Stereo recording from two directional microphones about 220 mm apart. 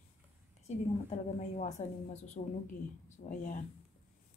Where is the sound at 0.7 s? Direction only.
30° left (ahead or behind).